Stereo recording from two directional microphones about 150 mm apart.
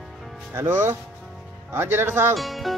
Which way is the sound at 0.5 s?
15° right (ahead or behind).